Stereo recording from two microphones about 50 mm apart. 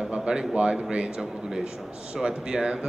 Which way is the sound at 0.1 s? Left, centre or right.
Right.